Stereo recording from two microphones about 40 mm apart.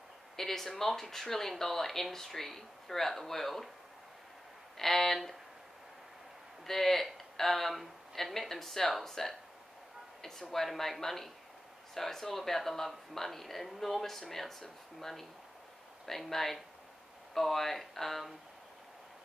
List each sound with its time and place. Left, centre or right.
0.4 s speech: centre
4.7 s speech: centre
6.6 s speech: centre
10.5 s speech: centre